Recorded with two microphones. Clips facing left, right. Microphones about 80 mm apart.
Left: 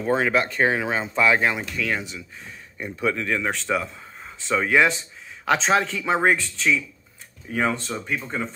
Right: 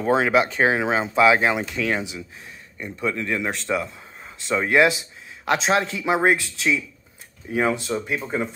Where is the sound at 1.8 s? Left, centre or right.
Right.